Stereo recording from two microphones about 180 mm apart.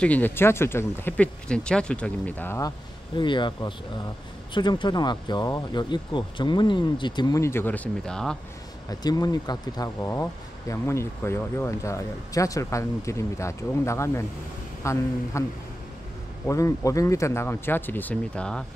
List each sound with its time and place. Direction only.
0.0 s speech: 10° left (ahead or behind)
3.2 s speech: 25° left (ahead or behind); by 8.4 s 5° left (ahead or behind)
9.0 s speech: 20° left (ahead or behind)
16.4 s speech: 15° left (ahead or behind)